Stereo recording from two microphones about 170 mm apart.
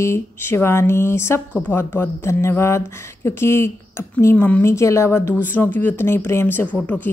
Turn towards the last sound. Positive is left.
turn(degrees=15)  # may be behind; listen again after turning